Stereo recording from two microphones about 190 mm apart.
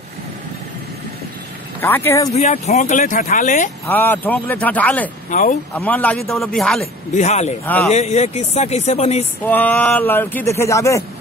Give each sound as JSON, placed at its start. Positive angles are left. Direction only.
{"t": 1.8, "sound": "speech", "side_deg": 10}
{"t": 2.3, "sound": "speech", "side_deg": 35}
{"t": 3.8, "sound": "speech", "side_deg": 10}
{"t": 5.3, "sound": "speech", "side_deg": 40}
{"t": 5.8, "sound": "speech", "side_deg": 5}
{"t": 7.2, "sound": "speech", "side_deg": 35}
{"t": 7.6, "sound": "speech", "side_deg": 10}
{"t": 7.9, "sound": "speech", "side_deg": 35}
{"t": 9.4, "sound": "speech", "side_deg": 10}